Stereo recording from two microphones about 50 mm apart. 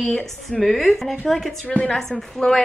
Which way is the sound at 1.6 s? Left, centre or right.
Left.